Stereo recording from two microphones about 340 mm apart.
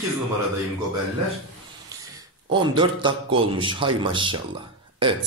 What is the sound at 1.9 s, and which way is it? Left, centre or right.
A man's voice, centre.